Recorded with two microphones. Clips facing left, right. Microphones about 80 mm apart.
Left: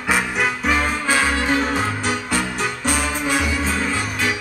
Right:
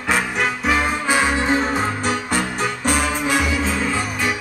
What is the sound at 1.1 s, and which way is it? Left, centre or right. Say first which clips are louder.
Music: right 1 dB; centre.